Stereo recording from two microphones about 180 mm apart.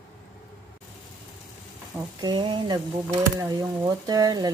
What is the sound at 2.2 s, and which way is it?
Speech, 25° right (ahead or behind).